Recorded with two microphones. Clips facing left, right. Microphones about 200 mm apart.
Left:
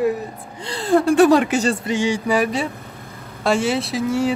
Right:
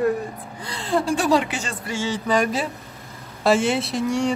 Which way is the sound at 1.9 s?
15° left (ahead or behind).